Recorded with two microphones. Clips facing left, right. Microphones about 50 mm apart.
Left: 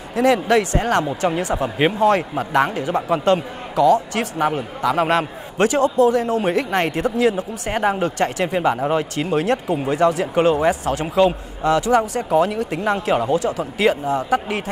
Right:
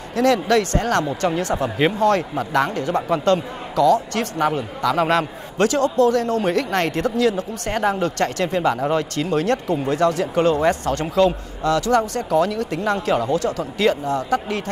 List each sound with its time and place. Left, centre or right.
0.1 s speech: centre